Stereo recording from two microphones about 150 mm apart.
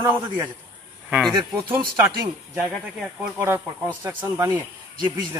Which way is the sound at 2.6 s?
5° right (ahead or behind).